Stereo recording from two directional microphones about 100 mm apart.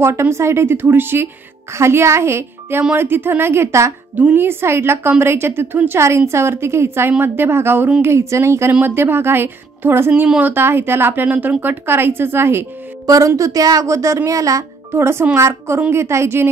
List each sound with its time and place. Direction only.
0.0 s a woman's voice: 25° right (ahead or behind)
13.0 s a woman's voice: 35° right (ahead or behind)